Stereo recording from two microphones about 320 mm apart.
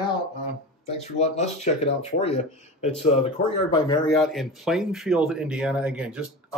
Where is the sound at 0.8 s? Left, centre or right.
Centre.